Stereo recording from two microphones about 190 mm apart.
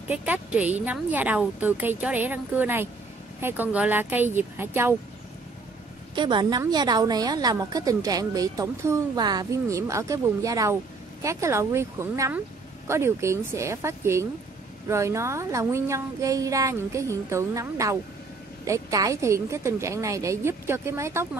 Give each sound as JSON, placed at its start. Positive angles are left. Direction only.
{"t": 0.1, "sound": "speech", "side_deg": -5}
{"t": 6.1, "sound": "a woman's voice", "side_deg": -25}